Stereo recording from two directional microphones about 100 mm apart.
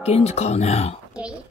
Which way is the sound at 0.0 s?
90° left.